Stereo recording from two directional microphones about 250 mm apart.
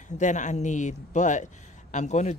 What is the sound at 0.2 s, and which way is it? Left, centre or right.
Speech, left.